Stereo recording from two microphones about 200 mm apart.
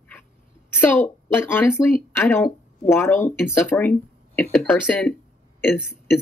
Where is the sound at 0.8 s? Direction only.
10° left (ahead or behind).